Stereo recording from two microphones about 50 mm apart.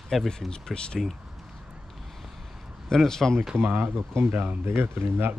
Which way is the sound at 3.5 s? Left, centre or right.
Right.